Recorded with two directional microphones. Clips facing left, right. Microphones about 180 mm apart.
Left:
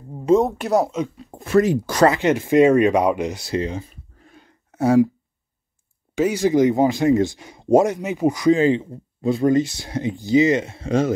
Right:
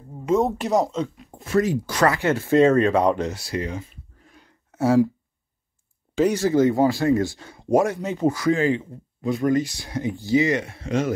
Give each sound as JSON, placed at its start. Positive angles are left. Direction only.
{"t": 0.4, "sound": "speech", "side_deg": 0}
{"t": 1.1, "sound": "a sound", "side_deg": 35}
{"t": 1.4, "sound": "speech", "side_deg": 65}
{"t": 2.0, "sound": "speech", "side_deg": 20}
{"t": 6.1, "sound": "speech", "side_deg": 10}